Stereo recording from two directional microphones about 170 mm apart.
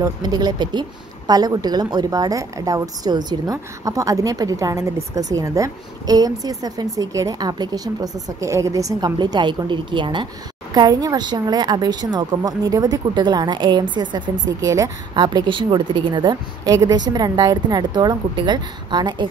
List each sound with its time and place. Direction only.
0.0 s speech: 25° right (ahead or behind)